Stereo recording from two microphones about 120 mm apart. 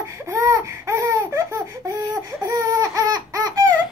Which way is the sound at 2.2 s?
30° right (ahead or behind).